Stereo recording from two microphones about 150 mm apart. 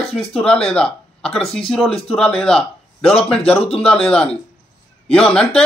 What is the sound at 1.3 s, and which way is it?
Speech, 40° left (ahead or behind).